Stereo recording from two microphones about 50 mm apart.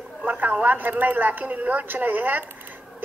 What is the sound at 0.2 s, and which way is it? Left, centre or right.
A woman's voice, right.